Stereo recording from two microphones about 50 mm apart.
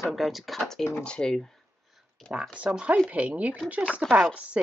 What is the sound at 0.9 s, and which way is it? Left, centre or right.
Speech, left.